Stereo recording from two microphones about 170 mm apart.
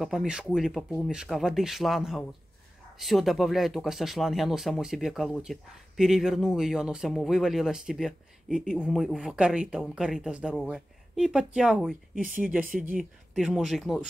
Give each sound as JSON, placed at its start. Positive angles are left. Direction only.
{"t": 0.0, "sound": "speech", "side_deg": 0}
{"t": 13.3, "sound": "speech", "side_deg": 0}